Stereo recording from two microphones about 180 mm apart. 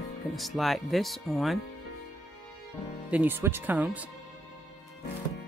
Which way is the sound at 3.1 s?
10° right (ahead or behind).